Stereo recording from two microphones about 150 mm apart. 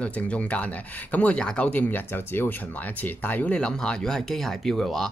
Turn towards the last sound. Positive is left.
turn(degrees=0)  # may be behind; listen again after turning